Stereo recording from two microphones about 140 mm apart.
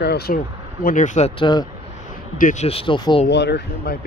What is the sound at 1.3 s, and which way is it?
Speech, 35° left (ahead or behind).